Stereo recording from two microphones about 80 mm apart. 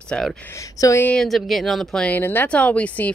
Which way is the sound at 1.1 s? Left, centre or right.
Centre.